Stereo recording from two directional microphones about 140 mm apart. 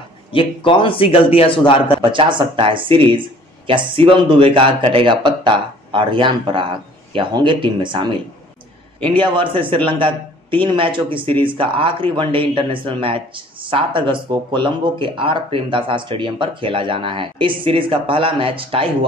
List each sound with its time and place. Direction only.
0.3 s a man's voice: 40° left (ahead or behind)
2.0 s speech: 35° right (ahead or behind)
9.3 s speech: 35° right (ahead or behind)